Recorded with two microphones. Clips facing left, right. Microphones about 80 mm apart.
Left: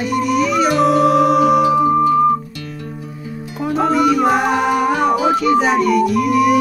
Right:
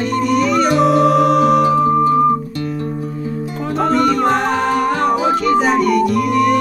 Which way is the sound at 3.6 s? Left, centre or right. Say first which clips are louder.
Left 1 dB; centre.